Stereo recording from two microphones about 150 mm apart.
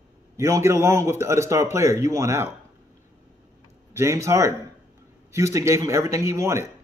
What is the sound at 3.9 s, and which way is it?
A man's voice, 20° right (ahead or behind).